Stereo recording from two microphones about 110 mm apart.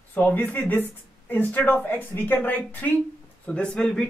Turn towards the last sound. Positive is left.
turn(degrees=5)  # may be behind; listen again after turning